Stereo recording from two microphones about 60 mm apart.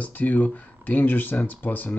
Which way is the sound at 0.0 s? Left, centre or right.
Left.